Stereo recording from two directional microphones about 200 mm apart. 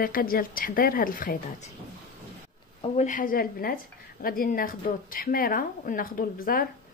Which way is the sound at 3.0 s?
40° left (ahead or behind).